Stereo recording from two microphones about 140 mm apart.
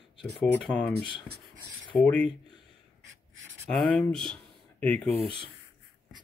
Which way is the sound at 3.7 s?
5° left (ahead or behind).